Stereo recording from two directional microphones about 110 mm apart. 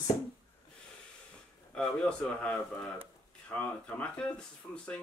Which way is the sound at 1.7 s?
10° left (ahead or behind).